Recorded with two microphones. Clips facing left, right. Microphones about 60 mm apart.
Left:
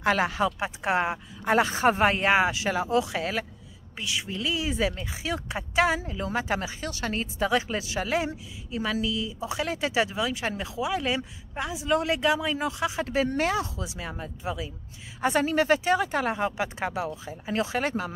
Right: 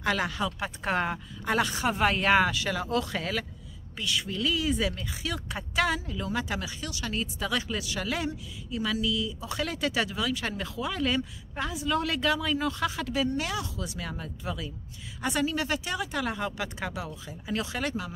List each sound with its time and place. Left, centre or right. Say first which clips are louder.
0.0 s speech: left 4 dB; left
0.6 s speech: left 3 dB; centre
1.5 s speech: left 5 dB; left; by 13.0 s centre
13.0 s speech: left 7 dB; left
15.2 s speech: left 6 dB; left